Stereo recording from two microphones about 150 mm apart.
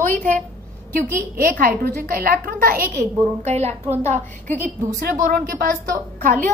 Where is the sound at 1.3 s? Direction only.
75° right (ahead or behind).